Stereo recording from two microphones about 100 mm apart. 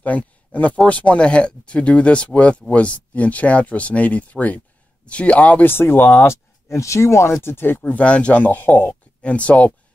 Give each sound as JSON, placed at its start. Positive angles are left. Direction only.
{"t": 0.0, "sound": "speech", "side_deg": 15}